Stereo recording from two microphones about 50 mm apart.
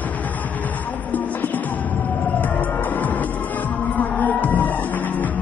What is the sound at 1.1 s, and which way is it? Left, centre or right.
Music, left.